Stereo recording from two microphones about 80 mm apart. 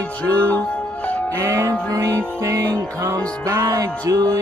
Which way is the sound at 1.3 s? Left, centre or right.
Right.